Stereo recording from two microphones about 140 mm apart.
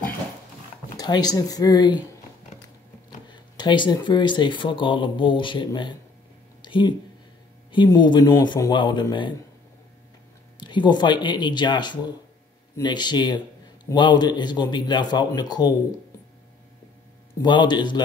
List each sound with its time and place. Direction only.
0.9 s speech: 30° left (ahead or behind)
3.3 s speech: 35° left (ahead or behind)
6.6 s a sound: 35° left (ahead or behind)
7.7 s speech: 35° left (ahead or behind)
10.6 s speech: 35° left (ahead or behind)
17.4 s speech: 35° left (ahead or behind)